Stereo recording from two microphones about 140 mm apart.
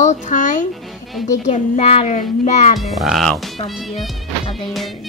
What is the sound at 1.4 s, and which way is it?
A child's voice, 50° left (ahead or behind).